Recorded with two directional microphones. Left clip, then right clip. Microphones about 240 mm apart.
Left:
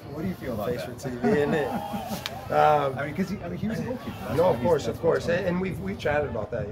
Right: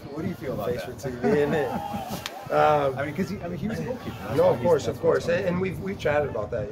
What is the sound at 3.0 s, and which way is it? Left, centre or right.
Speech, right.